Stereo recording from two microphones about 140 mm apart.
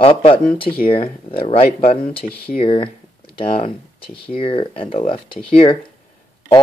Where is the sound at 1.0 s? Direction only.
90° left.